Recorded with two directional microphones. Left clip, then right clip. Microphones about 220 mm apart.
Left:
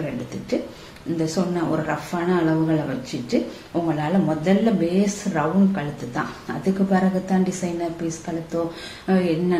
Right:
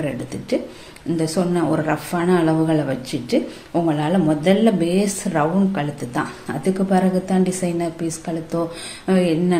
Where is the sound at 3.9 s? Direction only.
45° right (ahead or behind).